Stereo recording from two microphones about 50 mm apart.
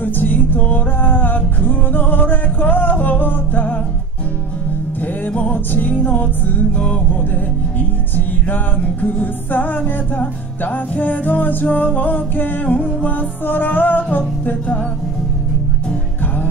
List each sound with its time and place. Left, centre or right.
0.0 s music: left
5.0 s music: left
9.0 s music: left